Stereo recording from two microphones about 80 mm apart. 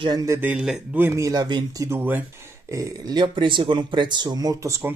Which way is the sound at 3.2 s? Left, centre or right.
Right.